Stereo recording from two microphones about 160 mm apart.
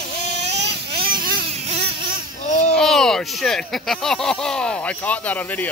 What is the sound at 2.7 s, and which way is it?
Speech, 5° left (ahead or behind).